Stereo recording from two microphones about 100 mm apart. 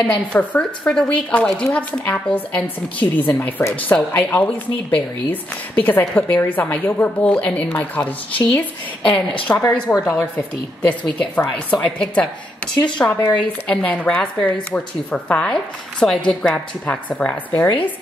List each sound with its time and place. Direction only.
0.0 s speech: 10° left (ahead or behind)
9.5 s a woman's voice: 25° left (ahead or behind)
9.9 s speech: 10° left (ahead or behind)
11.1 s speech: 10° left (ahead or behind)